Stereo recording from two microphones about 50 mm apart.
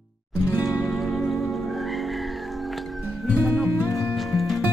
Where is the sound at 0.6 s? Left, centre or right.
Centre.